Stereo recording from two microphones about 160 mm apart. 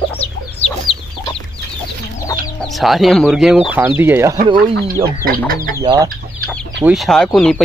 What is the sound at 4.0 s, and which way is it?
Speech, 15° right (ahead or behind).